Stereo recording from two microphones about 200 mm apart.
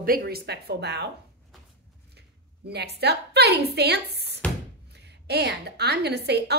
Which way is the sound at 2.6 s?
55° right (ahead or behind).